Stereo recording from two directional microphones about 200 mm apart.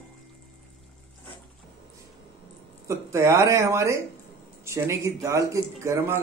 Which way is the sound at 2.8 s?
15° right (ahead or behind).